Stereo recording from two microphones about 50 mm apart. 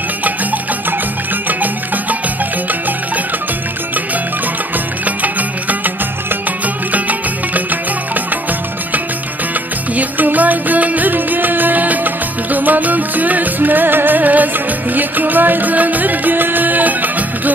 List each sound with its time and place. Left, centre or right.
1.5 s music: right
5.0 s music: right
6.9 s music: right
9.9 s music: right